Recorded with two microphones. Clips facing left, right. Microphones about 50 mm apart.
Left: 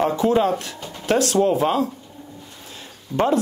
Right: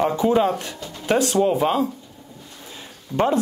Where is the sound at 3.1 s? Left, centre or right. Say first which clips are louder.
Even; centre.